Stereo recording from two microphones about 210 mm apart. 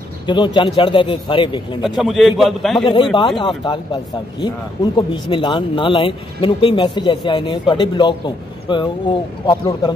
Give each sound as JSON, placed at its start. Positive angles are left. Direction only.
{"t": 0.3, "sound": "speech", "side_deg": 20}
{"t": 1.8, "sound": "a man's voice", "side_deg": 0}
{"t": 2.8, "sound": "speech", "side_deg": 25}